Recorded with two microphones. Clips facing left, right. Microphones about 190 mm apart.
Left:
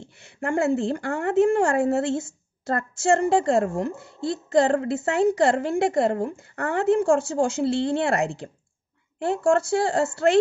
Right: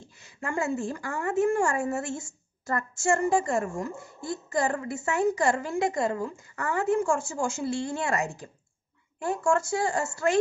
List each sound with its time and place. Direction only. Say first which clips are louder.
0.0 s a woman's voice: left 6 dB; 65° left (ahead or behind)
9.5 s a woman's voice: left 5 dB; 70° left (ahead or behind)